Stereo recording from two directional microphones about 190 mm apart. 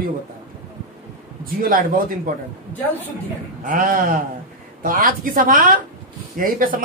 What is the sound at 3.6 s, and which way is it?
A man's voice, 45° right (ahead or behind).